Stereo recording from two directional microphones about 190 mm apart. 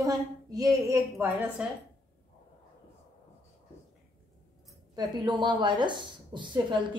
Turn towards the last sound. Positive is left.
turn(degrees=-25)  # may be behind; listen again after turning